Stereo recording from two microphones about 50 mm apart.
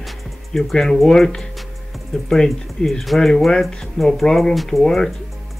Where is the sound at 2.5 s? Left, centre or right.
Centre.